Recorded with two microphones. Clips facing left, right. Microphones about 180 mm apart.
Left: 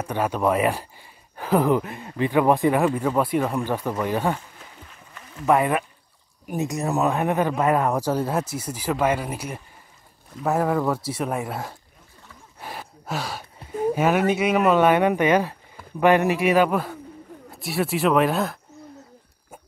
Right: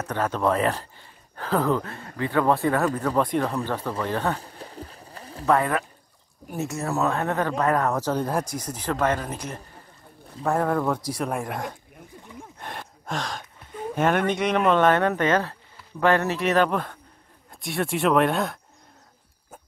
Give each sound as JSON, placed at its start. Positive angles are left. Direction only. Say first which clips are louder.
{"t": 0.0, "sound": "speech", "louder": "left 2 dB", "side_deg": 10}
{"t": 4.4, "sound": "a sound", "louder": "right 7 dB", "side_deg": -35}
{"t": 5.5, "sound": "speech", "louder": "left 2 dB", "side_deg": 15}
{"t": 12.5, "sound": "gasp", "louder": "left 4 dB", "side_deg": 5}
{"t": 13.9, "sound": "speech", "louder": "even", "side_deg": 5}